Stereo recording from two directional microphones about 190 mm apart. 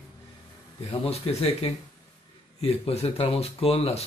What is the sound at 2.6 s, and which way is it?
Speech, 30° left (ahead or behind).